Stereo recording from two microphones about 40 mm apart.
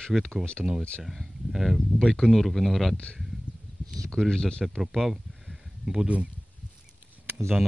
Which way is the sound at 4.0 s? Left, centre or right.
Centre.